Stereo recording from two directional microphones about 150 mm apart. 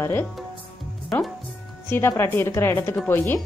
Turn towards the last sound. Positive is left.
turn(degrees=15)  # may be behind; listen again after turning